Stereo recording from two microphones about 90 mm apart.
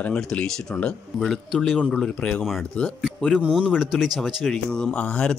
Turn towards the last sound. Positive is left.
turn(degrees=10)  # may be behind; listen again after turning